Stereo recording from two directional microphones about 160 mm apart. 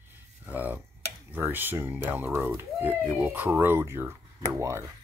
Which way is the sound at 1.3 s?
10° right (ahead or behind).